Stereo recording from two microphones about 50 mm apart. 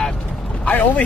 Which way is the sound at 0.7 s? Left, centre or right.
Left.